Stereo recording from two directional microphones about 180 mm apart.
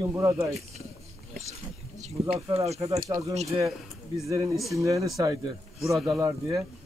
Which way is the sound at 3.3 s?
35° right (ahead or behind).